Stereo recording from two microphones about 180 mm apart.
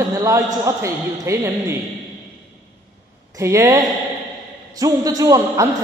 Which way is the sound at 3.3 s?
15° right (ahead or behind).